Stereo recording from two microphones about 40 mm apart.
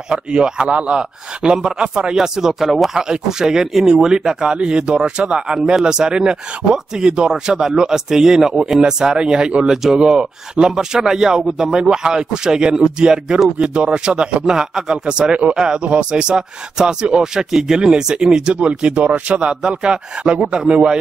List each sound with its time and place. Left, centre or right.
0.1 s a man's voice: right
18.5 s a man's voice: right